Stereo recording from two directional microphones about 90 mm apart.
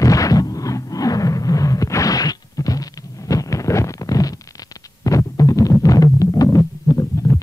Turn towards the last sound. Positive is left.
turn(degrees=40)  # may be behind; listen again after turning